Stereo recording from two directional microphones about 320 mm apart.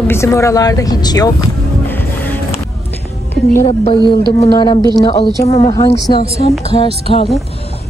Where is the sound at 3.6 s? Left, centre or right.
Centre.